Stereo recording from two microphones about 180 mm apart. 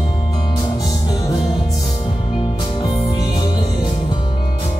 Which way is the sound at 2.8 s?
20° left (ahead or behind).